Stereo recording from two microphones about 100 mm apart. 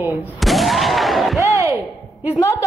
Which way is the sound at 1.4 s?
30° right (ahead or behind).